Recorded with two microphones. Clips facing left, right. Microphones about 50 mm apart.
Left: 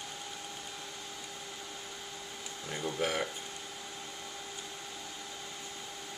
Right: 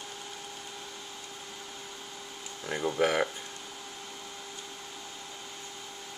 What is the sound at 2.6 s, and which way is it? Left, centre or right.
Speech, right.